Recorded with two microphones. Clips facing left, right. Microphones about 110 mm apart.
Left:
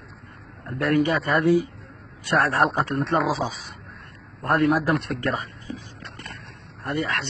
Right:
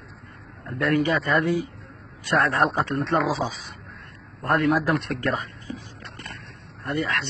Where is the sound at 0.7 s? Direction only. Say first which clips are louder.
Left 1 dB; 35° left (ahead or behind).